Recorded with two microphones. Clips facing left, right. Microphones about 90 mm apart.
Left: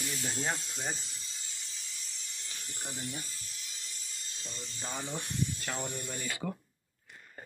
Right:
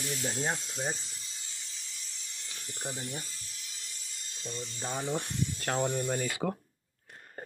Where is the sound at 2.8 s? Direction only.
35° right (ahead or behind).